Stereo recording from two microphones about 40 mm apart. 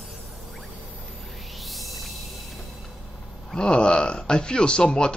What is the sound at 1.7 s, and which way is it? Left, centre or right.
Music, centre.